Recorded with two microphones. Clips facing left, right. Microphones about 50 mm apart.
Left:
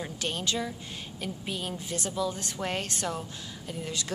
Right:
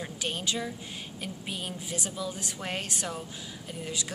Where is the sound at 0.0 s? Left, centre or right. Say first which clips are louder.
Left 1 dB; centre.